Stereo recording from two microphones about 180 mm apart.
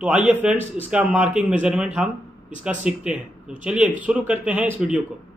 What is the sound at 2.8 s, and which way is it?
Speech, 5° right (ahead or behind).